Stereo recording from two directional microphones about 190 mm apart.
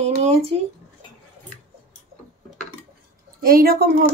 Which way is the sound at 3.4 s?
50° right (ahead or behind).